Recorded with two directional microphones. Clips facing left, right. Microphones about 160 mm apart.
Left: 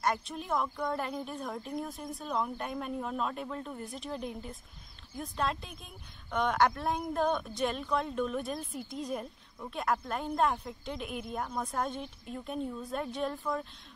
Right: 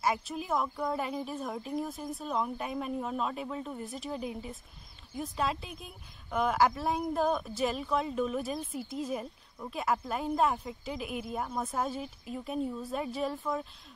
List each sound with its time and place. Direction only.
0.0 s speech: 5° right (ahead or behind)